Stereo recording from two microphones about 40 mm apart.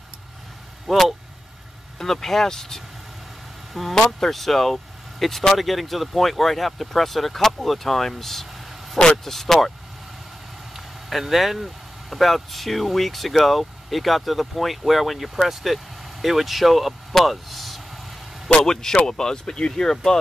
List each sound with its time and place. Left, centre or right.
0.8 s speech: centre
11.1 s speech: centre
18.7 s speech: centre